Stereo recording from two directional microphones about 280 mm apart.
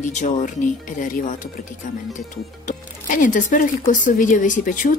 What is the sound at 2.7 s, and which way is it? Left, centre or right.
A woman's voice, left.